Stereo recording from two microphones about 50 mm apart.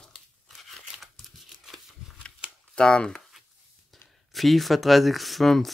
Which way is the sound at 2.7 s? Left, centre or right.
Centre.